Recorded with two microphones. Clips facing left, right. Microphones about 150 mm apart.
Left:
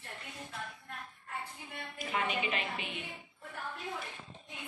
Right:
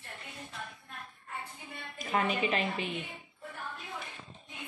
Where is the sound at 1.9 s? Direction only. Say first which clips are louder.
Right 4 dB; 40° right (ahead or behind).